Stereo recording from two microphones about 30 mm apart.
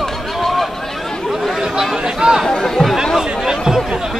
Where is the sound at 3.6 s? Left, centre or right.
Centre.